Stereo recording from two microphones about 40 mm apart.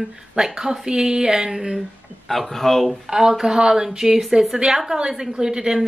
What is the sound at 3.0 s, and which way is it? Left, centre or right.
A woman's voice, centre.